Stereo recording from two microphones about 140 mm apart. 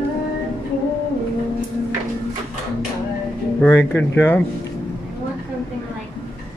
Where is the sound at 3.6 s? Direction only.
15° left (ahead or behind).